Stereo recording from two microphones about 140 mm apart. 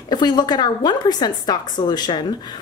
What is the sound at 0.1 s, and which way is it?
A woman's voice, 30° left (ahead or behind).